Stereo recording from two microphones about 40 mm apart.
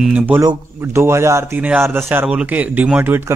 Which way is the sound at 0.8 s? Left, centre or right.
Right.